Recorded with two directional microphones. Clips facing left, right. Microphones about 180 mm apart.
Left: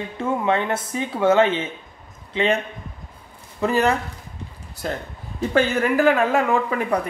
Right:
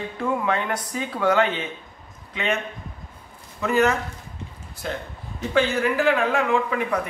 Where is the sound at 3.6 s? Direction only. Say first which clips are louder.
Left 1 dB; 30° left (ahead or behind).